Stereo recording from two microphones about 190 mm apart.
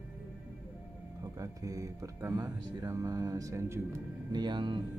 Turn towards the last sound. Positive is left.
turn(degrees=-25)  # may be behind; listen again after turning